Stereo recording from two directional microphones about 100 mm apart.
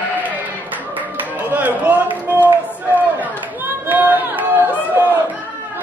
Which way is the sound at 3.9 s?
20° right (ahead or behind).